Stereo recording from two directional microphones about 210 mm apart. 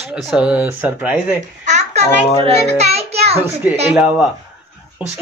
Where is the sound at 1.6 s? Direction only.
35° right (ahead or behind).